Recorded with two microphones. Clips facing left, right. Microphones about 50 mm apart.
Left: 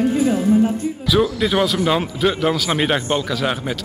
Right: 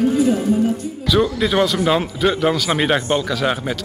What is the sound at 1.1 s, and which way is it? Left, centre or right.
A man's voice, centre.